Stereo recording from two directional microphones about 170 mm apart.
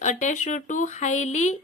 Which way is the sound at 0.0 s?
45° left (ahead or behind).